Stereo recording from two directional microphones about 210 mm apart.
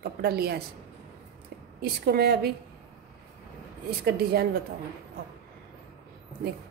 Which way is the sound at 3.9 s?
50° right (ahead or behind).